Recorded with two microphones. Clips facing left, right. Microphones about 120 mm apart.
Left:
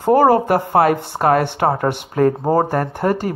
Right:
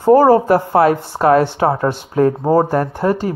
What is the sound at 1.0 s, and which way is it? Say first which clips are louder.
Speech: right 3 dB; 55° left (ahead or behind).